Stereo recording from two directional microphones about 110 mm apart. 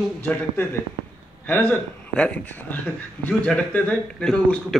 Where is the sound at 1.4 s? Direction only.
15° left (ahead or behind).